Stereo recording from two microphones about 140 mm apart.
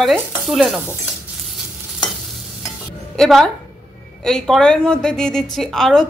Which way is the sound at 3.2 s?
Centre (ahead or behind).